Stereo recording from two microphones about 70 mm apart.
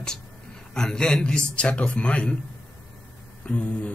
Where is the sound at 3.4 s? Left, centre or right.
Centre.